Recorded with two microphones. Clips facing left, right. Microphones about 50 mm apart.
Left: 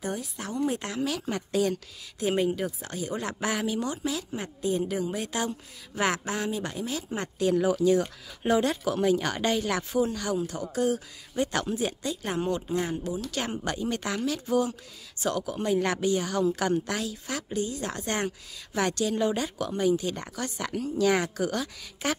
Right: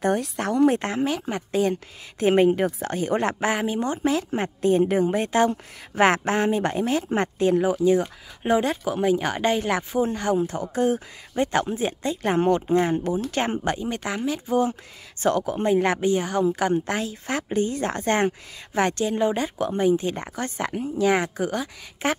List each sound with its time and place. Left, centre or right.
0.4 s speech: right
0.7 s speech: right
2.1 s speech: right
14.6 s speech: right